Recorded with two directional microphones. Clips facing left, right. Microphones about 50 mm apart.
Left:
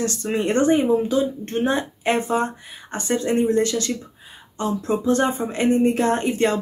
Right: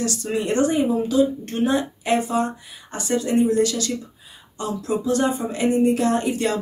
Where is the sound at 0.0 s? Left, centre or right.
Left.